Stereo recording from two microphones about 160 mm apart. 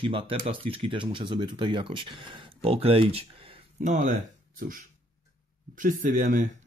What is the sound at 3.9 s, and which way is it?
Speech, 50° right (ahead or behind).